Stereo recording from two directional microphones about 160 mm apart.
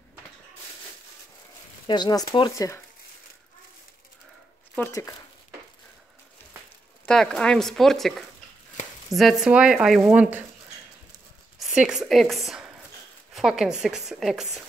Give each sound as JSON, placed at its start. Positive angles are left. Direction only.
{"t": 1.9, "sound": "speech", "side_deg": 25}
{"t": 4.7, "sound": "speech", "side_deg": 15}
{"t": 7.1, "sound": "speech", "side_deg": 5}
{"t": 11.6, "sound": "speech", "side_deg": -5}